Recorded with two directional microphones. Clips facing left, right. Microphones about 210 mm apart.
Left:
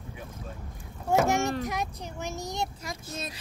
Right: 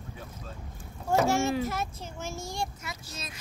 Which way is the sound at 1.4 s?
5° right (ahead or behind).